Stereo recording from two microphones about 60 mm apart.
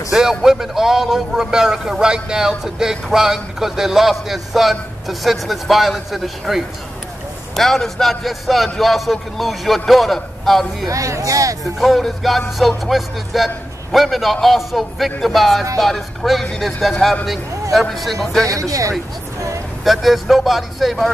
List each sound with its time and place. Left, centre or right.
0.1 s a man's voice: centre
10.9 s speech: right
11.8 s a man's voice: centre
18.5 s speech: right
19.8 s a man's voice: centre